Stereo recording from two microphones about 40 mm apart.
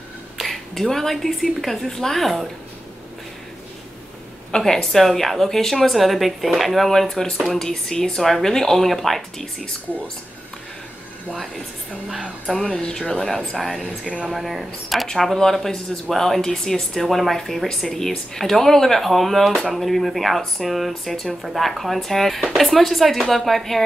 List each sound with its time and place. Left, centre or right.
0.4 s speech: centre
4.5 s speech: centre
12.1 s speech: centre
12.5 s speech: centre
14.0 s speech: centre
14.3 s speech: centre